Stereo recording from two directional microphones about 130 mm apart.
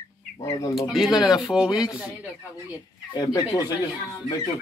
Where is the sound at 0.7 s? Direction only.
5° right (ahead or behind).